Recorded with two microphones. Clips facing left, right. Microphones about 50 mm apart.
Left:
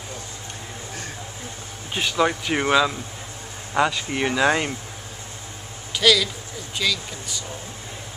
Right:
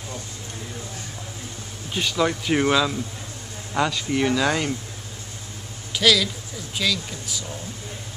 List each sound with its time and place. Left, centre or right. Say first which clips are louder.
2.0 s speech: left 1 dB; centre
5.9 s speech: left 1 dB; centre